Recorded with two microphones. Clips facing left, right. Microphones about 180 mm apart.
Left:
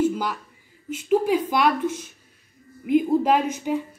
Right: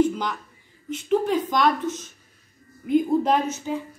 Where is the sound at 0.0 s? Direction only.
5° left (ahead or behind).